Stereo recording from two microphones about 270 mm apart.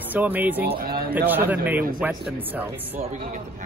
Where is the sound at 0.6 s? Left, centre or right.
Right.